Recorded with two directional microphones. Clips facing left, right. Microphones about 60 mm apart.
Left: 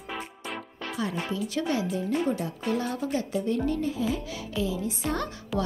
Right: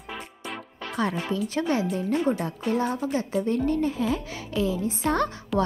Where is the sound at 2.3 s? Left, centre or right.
Right.